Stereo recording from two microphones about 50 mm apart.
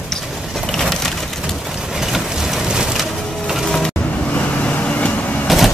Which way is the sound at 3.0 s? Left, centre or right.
Centre.